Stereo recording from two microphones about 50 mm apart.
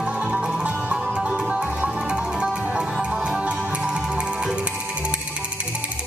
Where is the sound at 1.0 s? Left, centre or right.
Centre.